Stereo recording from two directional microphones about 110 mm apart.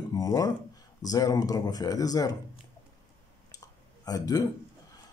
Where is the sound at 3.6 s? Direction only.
35° left (ahead or behind).